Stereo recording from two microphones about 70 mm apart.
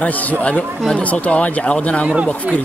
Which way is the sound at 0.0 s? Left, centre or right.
Left.